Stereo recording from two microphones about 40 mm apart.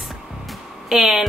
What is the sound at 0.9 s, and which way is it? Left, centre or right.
Speech, centre.